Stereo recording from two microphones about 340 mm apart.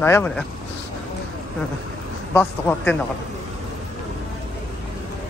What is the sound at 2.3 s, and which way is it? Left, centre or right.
Speech, centre.